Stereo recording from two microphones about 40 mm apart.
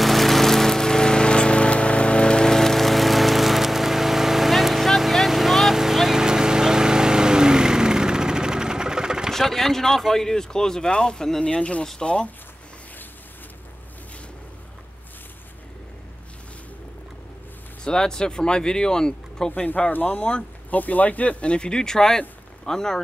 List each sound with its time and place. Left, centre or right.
0.0 s a sound: centre
5.8 s vehicle: centre
9.3 s speech: centre; by 12.3 s left
17.8 s speech: centre
19.9 s speech: left; by 23.0 s centre